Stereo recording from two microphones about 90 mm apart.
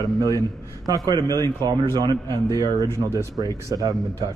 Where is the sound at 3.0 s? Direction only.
30° right (ahead or behind).